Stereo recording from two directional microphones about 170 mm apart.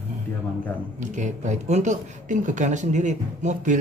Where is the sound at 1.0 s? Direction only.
45° right (ahead or behind).